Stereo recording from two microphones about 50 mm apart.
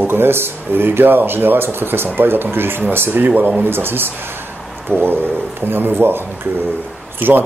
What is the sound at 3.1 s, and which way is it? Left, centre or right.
Speech, right.